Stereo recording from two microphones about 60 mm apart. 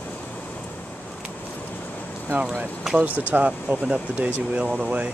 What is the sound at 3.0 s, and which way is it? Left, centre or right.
Speech, right.